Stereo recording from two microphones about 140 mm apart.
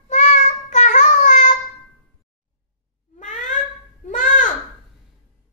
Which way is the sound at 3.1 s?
65° left (ahead or behind).